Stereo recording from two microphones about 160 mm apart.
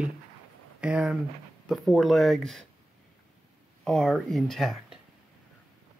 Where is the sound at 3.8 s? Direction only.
Centre (ahead or behind).